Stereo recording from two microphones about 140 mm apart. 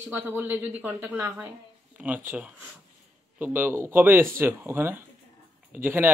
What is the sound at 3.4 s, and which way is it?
Speech, 15° right (ahead or behind).